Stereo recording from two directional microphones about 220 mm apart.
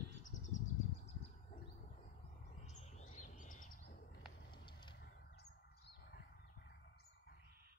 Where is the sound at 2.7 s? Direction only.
30° left (ahead or behind).